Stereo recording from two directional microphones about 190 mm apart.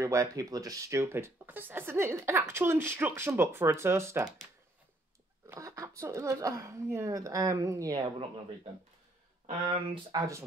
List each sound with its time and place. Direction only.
0.0 s speech: 15° right (ahead or behind)
5.5 s speech: 15° right (ahead or behind)
9.7 s speech: 20° right (ahead or behind)